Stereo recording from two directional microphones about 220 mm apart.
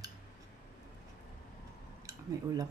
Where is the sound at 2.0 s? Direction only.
15° right (ahead or behind).